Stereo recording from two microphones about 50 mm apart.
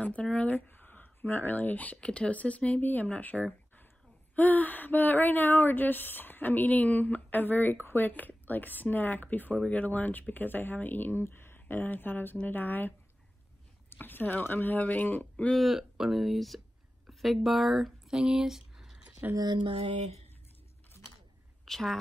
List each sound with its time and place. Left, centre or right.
0.0 s speech: left
0.5 s speech: left
2.0 s speech: left
2.8 s speech: left
11.6 s speech: left
13.9 s speech: left
15.5 s speech: centre
21.6 s speech: centre